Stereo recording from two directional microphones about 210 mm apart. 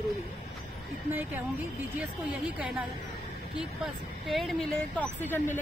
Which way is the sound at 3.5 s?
Centre (ahead or behind).